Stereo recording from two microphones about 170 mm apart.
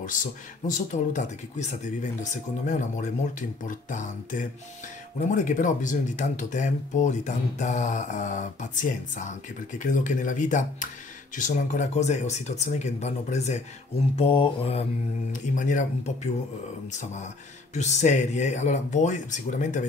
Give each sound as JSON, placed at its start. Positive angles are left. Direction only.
{"t": 0.0, "sound": "speech", "side_deg": 50}
{"t": 14.1, "sound": "mantra", "side_deg": 30}
{"t": 15.5, "sound": "speech", "side_deg": 45}